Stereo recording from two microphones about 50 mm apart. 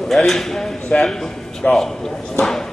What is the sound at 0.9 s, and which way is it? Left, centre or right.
Speech, left.